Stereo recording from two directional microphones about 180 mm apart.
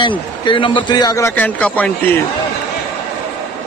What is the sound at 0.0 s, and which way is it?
A man's voice, 25° left (ahead or behind).